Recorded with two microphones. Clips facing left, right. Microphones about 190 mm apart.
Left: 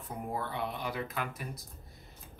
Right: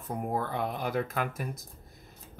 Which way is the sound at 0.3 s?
45° right (ahead or behind).